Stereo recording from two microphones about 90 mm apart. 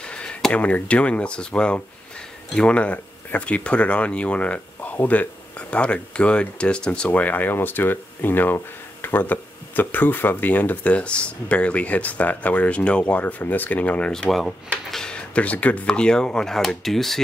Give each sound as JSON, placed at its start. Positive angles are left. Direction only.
{"t": 0.0, "sound": "speech", "side_deg": 10}